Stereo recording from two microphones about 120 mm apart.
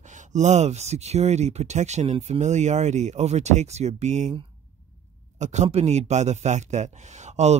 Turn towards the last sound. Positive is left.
turn(degrees=-70)  # may be behind; listen again after turning